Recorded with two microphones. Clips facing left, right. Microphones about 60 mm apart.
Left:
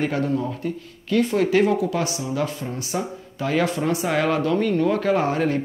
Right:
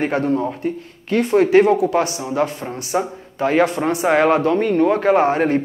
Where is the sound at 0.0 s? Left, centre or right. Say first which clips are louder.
Right 4 dB; right.